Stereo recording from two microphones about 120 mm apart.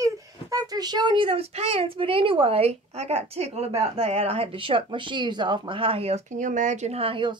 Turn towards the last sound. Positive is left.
turn(degrees=-45)  # may be behind; listen again after turning